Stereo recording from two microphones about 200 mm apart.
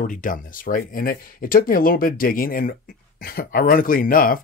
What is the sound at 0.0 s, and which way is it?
Speech, 40° left (ahead or behind).